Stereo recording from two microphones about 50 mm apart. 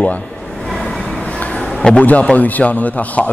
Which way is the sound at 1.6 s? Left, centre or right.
Centre.